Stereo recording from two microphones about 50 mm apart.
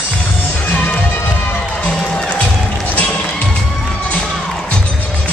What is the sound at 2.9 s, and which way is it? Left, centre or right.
Music, left.